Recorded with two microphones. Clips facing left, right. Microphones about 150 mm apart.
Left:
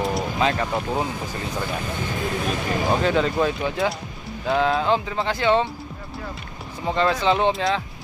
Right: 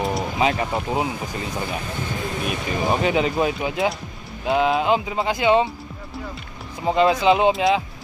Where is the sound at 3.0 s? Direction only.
15° right (ahead or behind).